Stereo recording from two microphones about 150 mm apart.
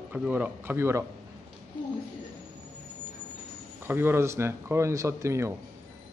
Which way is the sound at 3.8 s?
15° right (ahead or behind).